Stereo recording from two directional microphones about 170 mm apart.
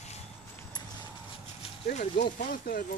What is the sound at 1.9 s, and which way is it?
Speech, 50° left (ahead or behind).